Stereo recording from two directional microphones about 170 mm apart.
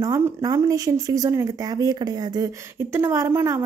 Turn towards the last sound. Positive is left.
turn(degrees=-15)  # may be behind; listen again after turning